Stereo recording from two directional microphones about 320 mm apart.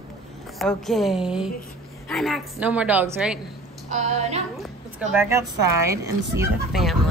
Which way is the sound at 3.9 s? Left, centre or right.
Right.